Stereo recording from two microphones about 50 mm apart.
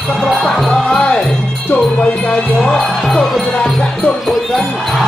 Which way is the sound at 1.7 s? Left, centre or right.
Left.